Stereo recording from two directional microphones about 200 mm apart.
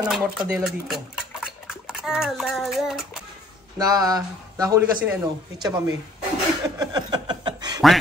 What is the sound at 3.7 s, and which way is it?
Speech, 20° right (ahead or behind).